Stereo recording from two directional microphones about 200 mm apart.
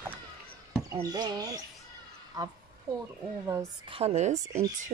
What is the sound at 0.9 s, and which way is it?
A woman's voice, 20° right (ahead or behind).